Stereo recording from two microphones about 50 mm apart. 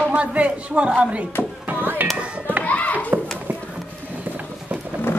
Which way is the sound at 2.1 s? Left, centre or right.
Right.